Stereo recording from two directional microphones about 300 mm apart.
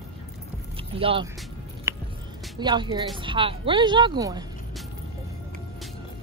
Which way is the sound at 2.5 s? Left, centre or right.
Centre.